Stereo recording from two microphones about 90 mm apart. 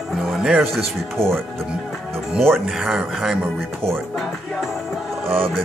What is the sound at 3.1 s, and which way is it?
Speech, 5° right (ahead or behind).